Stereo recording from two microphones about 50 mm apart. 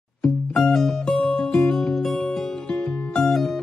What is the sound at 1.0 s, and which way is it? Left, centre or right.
Music, left.